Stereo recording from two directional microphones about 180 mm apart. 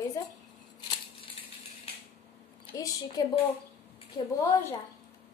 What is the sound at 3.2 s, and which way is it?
Speech, 20° left (ahead or behind).